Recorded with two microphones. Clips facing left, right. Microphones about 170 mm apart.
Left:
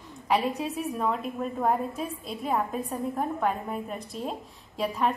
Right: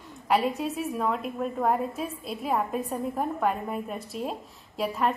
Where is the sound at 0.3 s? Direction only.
Centre (ahead or behind).